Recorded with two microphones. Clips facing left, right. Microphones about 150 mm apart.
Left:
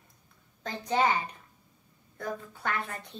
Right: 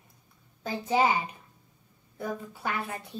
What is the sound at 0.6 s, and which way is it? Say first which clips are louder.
A child's voice: right 2 dB; 10° right (ahead or behind).